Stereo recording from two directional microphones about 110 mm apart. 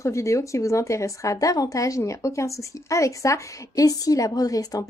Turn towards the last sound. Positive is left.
turn(degrees=35)  # may be behind; listen again after turning